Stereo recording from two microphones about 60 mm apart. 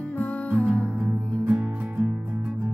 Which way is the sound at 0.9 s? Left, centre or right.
Right.